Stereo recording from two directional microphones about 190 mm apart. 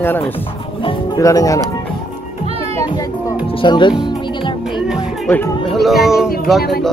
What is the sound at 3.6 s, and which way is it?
Speech, 25° left (ahead or behind).